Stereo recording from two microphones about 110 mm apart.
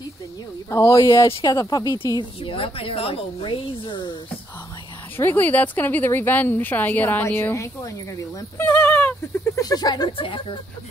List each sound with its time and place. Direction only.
0.7 s speech: 25° left (ahead or behind)
2.4 s speech: 55° left (ahead or behind)
5.1 s speech: 20° left (ahead or behind)
8.6 s a sound: 15° left (ahead or behind)
9.6 s speech: 35° left (ahead or behind)